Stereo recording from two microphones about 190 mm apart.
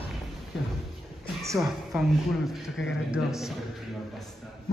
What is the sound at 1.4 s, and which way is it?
Speech, 15° right (ahead or behind).